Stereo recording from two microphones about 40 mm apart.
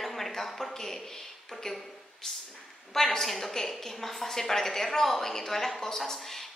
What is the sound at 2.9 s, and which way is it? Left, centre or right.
A woman's voice, centre.